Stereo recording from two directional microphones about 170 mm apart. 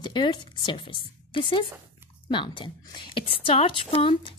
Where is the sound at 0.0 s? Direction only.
25° left (ahead or behind).